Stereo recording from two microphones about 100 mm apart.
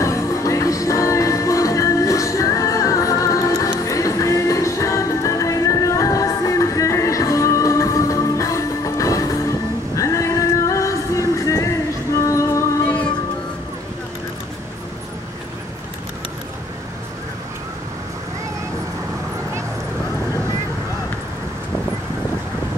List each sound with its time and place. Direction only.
0.0 s music: 30° left (ahead or behind)